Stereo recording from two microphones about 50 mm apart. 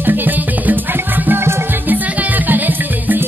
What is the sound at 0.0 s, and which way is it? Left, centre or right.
Music, right.